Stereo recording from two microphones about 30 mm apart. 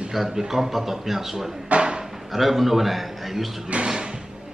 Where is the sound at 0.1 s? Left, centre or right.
Centre.